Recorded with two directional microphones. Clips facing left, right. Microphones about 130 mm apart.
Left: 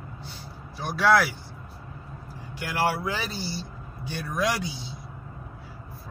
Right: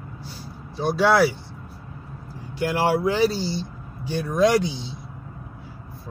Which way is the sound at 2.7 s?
15° right (ahead or behind).